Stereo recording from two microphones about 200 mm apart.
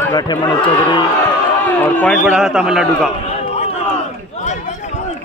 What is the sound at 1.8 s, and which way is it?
Speech, 10° left (ahead or behind).